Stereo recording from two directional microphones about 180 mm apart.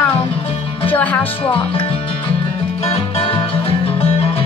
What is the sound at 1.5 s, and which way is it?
Music, 30° left (ahead or behind).